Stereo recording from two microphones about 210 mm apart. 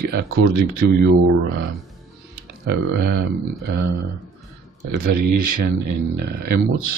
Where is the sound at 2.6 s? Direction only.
50° right (ahead or behind).